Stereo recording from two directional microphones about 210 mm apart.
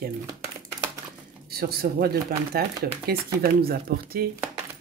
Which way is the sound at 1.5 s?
45° right (ahead or behind).